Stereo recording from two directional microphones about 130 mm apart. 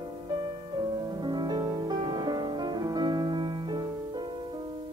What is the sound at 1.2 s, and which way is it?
Music, 35° right (ahead or behind).